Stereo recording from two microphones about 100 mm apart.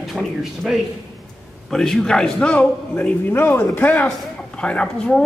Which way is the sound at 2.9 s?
20° left (ahead or behind).